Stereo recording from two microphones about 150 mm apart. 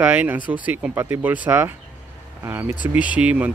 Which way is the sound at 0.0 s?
10° right (ahead or behind).